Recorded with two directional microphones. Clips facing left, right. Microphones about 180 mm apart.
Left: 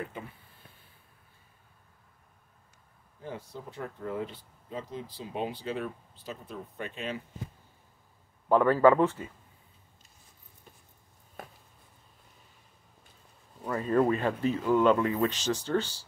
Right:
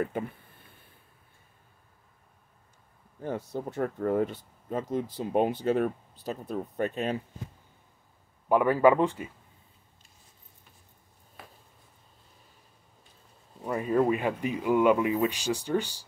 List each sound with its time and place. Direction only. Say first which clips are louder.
3.2 s speech: right 8 dB; 45° right (ahead or behind)
8.5 s speech: even; 15° right (ahead or behind)
13.7 s speech: right 1 dB; 15° right (ahead or behind)